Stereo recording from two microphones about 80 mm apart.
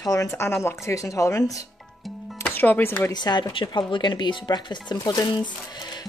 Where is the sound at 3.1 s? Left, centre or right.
Left.